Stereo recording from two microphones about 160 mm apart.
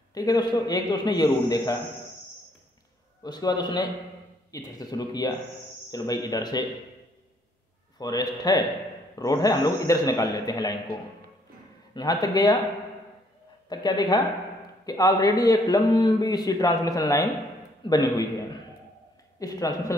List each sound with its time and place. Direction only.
0.1 s a man's voice: 25° left (ahead or behind)
3.3 s a man's voice: 25° left (ahead or behind)
8.0 s a man's voice: 25° left (ahead or behind)
13.7 s a man's voice: 25° left (ahead or behind)
19.4 s a man's voice: 20° left (ahead or behind)